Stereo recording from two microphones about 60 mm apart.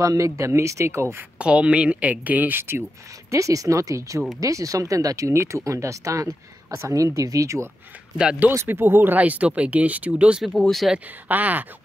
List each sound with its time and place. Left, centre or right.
0.0 s speech: right
1.4 s speech: centre; by 2.8 s right
3.3 s speech: right
8.2 s speech: centre
8.6 s speech: right
10.5 s speech: centre
11.2 s speech: right